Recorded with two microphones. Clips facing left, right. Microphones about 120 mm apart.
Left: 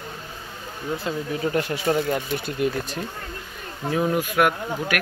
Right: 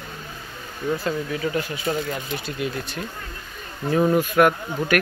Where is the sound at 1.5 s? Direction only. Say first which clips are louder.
Left 2 dB; 65° left (ahead or behind).